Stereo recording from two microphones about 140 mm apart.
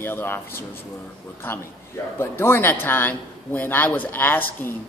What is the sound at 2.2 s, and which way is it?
A man's voice, 15° left (ahead or behind).